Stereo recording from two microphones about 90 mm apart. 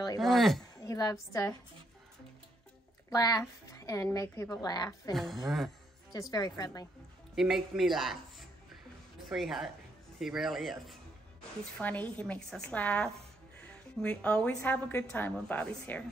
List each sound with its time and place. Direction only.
0.2 s speech: centre (ahead or behind)
0.7 s a woman's voice: 40° left (ahead or behind)
3.1 s a woman's voice: 45° left (ahead or behind)
4.6 s a woman's voice: 50° left (ahead or behind)
5.1 s speech: centre (ahead or behind)
6.3 s a woman's voice: 45° left (ahead or behind)
7.3 s speech: 5° right (ahead or behind)
11.8 s a woman's voice: 15° left (ahead or behind)